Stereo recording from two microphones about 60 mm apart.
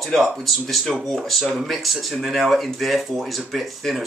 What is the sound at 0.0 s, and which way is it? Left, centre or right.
Speech, centre.